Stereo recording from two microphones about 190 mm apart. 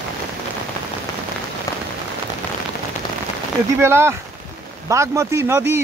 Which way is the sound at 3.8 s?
15° right (ahead or behind).